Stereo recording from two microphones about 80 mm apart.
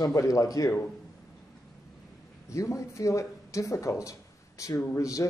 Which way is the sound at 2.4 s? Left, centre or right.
Left.